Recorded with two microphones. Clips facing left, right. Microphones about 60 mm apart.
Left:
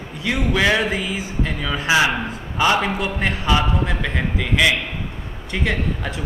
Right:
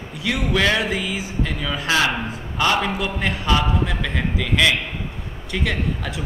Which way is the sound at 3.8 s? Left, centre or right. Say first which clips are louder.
Left 1 dB; centre.